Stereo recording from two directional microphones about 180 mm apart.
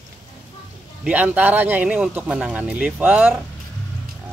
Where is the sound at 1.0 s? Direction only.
5° right (ahead or behind).